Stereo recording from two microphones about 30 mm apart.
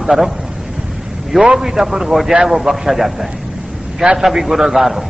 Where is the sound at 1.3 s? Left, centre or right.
Centre.